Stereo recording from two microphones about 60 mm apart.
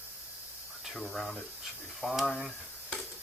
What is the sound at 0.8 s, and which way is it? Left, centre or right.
Speech, centre.